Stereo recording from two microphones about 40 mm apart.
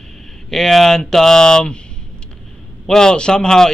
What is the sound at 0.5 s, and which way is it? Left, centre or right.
Speech, centre.